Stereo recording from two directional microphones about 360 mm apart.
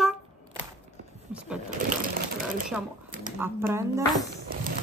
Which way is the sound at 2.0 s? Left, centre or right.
Right.